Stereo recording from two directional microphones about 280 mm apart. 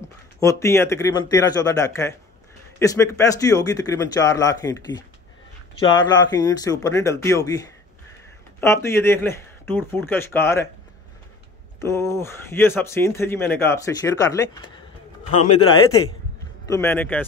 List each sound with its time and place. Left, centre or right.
0.4 s speech: centre
6.1 s speech: centre
8.8 s speech: centre
11.8 s speech: centre
15.5 s a man's voice: left
16.6 s speech: centre